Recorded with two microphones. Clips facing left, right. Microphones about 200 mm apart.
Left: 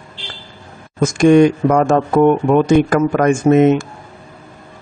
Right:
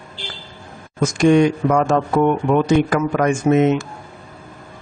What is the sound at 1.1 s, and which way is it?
Speech, 50° left (ahead or behind).